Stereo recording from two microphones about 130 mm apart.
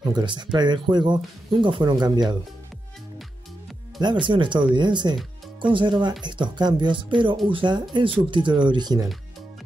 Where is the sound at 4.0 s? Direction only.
35° right (ahead or behind).